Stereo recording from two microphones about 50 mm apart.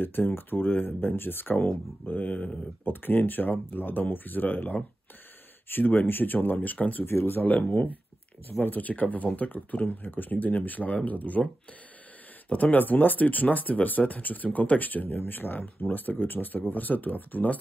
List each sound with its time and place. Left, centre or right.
0.0 s speech: left
7.1 s speech: left
12.4 s speech: left